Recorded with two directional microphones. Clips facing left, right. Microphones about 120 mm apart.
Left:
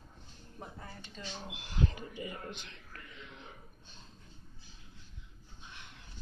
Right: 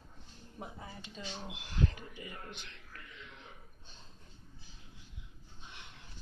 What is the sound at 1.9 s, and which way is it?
Speech, 25° left (ahead or behind).